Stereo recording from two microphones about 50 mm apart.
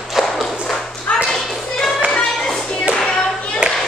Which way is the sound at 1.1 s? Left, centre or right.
Left.